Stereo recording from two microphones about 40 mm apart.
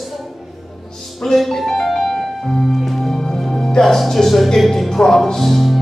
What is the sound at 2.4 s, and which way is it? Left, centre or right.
Music, centre.